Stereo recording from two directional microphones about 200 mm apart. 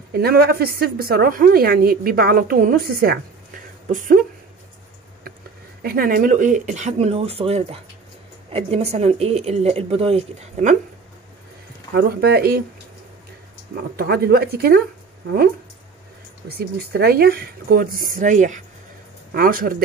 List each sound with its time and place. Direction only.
0.1 s a woman's voice: 50° right (ahead or behind)
5.8 s speech: 50° right (ahead or behind)
11.9 s a woman's voice: 50° right (ahead or behind)
13.9 s a woman's voice: 50° right (ahead or behind)
16.4 s a woman's voice: 50° right (ahead or behind)